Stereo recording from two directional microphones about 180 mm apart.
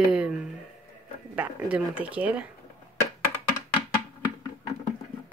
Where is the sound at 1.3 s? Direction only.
10° right (ahead or behind).